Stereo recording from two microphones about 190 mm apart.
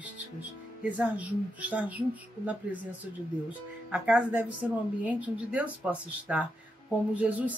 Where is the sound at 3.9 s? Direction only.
5° right (ahead or behind).